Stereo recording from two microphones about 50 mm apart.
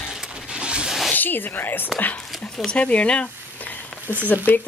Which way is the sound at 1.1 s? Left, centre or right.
Left.